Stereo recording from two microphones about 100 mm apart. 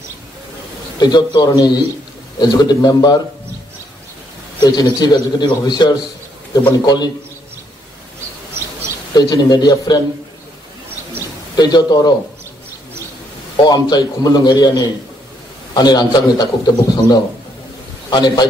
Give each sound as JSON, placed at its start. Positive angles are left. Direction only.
{"t": 0.9, "sound": "a man's voice", "side_deg": 45}
{"t": 4.6, "sound": "a man's voice", "side_deg": 45}
{"t": 9.1, "sound": "a man's voice", "side_deg": 45}
{"t": 11.5, "sound": "a man's voice", "side_deg": 45}
{"t": 13.7, "sound": "a man's voice", "side_deg": 45}